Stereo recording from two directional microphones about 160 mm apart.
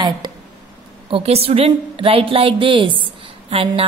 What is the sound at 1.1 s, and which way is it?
A woman's voice, 40° right (ahead or behind).